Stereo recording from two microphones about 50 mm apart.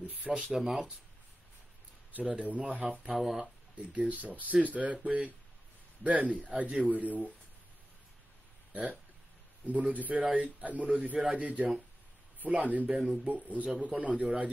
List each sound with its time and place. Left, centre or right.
0.0 s speech: right
0.5 s speech: centre
2.2 s speech: right
3.1 s speech: centre
3.9 s speech: right
9.7 s a man's voice: right
12.9 s speech: centre
13.2 s speech: right